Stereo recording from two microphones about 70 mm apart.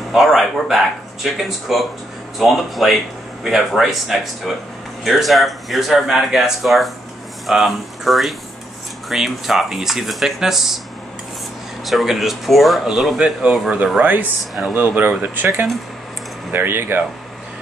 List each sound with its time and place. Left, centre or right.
0.1 s speech: centre
11.8 s speech: centre
13.9 s speech: right